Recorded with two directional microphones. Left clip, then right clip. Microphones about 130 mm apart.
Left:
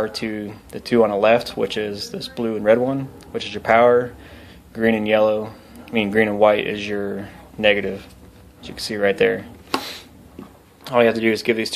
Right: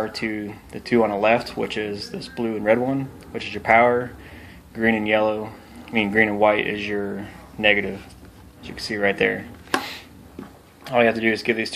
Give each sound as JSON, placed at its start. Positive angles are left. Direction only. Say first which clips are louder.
{"t": 0.0, "sound": "speech", "louder": "left 2 dB", "side_deg": 25}
{"t": 10.8, "sound": "speech", "louder": "left 2 dB", "side_deg": 25}